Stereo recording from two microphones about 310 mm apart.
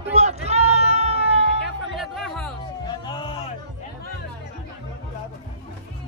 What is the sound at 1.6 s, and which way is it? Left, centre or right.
Music, centre.